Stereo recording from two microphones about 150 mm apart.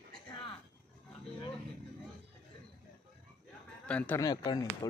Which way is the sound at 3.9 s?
10° left (ahead or behind).